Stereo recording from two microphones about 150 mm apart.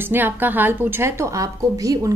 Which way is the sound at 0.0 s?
15° right (ahead or behind).